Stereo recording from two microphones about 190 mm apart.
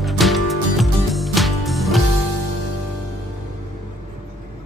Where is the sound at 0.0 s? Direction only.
Centre (ahead or behind).